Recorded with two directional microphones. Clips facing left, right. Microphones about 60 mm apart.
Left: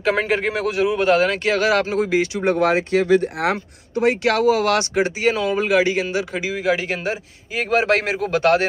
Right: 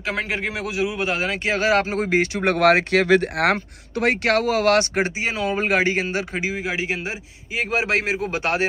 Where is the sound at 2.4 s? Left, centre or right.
Right.